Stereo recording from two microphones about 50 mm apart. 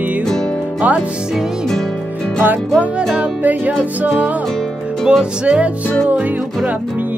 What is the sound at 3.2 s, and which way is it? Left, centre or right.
Music, right.